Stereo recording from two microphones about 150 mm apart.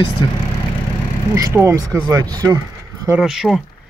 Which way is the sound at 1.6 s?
20° right (ahead or behind).